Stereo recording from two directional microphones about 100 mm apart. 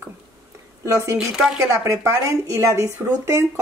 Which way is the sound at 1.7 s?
30° right (ahead or behind).